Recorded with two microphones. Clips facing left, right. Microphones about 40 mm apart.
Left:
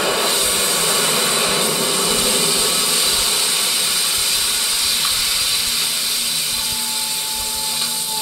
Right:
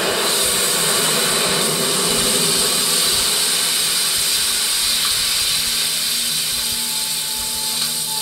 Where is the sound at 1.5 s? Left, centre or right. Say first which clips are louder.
Left 1 dB; left.